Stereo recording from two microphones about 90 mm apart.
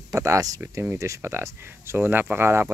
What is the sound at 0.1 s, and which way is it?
Speech, 40° right (ahead or behind).